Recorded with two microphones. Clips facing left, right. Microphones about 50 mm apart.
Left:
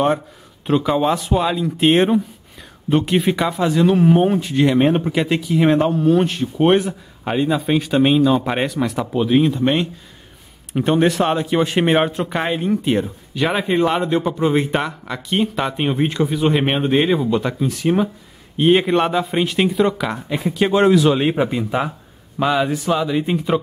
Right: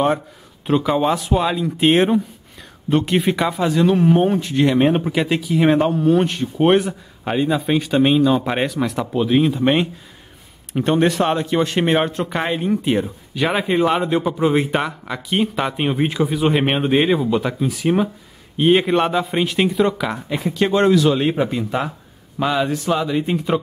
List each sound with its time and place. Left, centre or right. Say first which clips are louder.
0.7 s speech: even; centre
10.7 s speech: left 1 dB; centre